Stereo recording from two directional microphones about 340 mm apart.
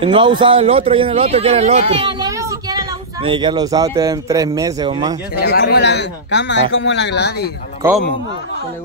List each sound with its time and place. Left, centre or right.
0.0 s a man's voice: centre
5.3 s speech: left